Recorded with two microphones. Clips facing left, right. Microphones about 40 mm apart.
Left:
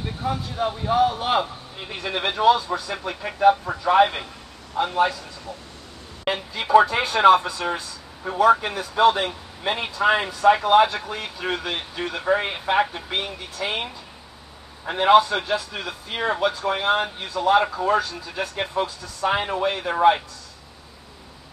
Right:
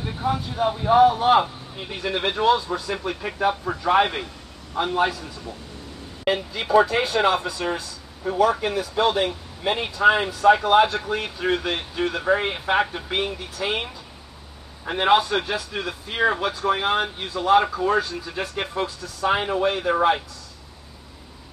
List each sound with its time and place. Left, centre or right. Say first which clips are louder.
0.0 s speech: right 2 dB; centre
2.7 s speech: right 1 dB; centre
6.2 s speech: right 2 dB; centre
15.0 s speech: left 3 dB; centre